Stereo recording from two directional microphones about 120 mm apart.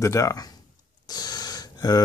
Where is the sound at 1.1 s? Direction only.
35° left (ahead or behind).